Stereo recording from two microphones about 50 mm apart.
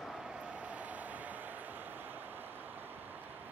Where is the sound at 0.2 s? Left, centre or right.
Centre.